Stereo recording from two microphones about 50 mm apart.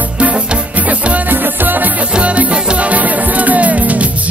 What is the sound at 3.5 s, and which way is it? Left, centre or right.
Music, right.